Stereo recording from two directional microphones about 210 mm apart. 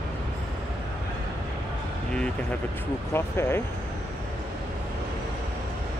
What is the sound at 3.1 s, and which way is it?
Speech, 10° left (ahead or behind).